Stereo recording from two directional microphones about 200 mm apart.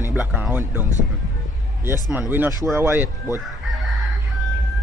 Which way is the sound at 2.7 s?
10° right (ahead or behind).